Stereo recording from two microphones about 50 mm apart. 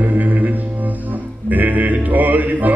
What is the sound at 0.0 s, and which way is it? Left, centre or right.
Music, right.